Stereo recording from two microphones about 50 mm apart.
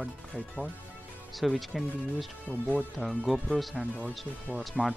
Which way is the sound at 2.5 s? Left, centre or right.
Left.